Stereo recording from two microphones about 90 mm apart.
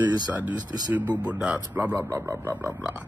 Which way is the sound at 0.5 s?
50° right (ahead or behind).